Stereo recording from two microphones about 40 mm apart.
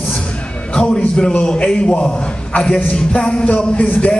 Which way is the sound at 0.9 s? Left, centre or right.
Centre.